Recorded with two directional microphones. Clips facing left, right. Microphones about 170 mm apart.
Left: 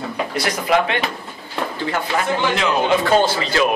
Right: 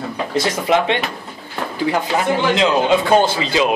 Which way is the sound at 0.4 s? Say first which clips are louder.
Right 2 dB; 25° right (ahead or behind).